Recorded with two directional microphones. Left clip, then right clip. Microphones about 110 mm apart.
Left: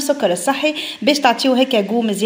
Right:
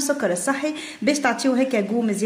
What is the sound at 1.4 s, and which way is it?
Speech, 25° left (ahead or behind).